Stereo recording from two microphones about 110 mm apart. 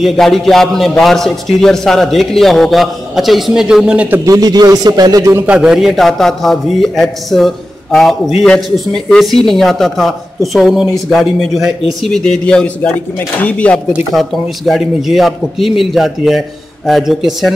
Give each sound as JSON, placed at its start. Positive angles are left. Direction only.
{"t": 0.0, "sound": "a man's voice", "side_deg": 0}
{"t": 4.3, "sound": "speech", "side_deg": -35}
{"t": 5.5, "sound": "a man's voice", "side_deg": -5}
{"t": 14.1, "sound": "a man's voice", "side_deg": 0}